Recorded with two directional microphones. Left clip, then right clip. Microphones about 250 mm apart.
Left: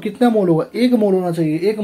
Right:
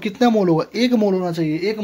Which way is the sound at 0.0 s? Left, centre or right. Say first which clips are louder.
Left 1 dB; right.